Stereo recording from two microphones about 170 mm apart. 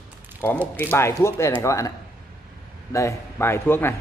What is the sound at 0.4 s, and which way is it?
A man's voice, 10° left (ahead or behind).